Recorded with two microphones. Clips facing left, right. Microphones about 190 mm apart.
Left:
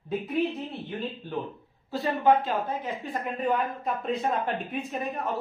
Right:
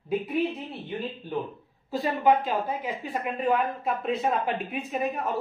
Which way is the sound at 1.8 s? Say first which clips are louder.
Even; 15° right (ahead or behind).